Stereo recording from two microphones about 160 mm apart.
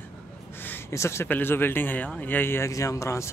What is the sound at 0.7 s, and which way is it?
Speech, 15° left (ahead or behind).